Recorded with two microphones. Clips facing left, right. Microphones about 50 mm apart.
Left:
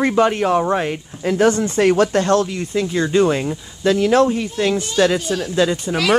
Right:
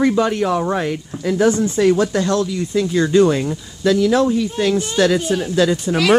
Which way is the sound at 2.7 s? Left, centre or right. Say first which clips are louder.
Right 5 dB; centre.